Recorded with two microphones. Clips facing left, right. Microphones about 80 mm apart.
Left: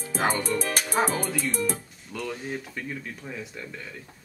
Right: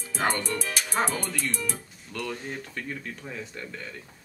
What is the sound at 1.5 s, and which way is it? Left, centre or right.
Speech, left.